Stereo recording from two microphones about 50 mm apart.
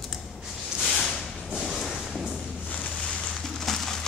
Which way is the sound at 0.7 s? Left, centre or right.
Centre.